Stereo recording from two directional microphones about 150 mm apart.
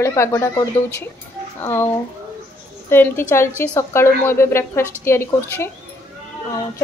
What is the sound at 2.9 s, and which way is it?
A woman's voice, 15° left (ahead or behind).